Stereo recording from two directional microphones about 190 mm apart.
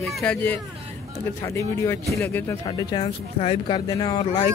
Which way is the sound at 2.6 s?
20° left (ahead or behind).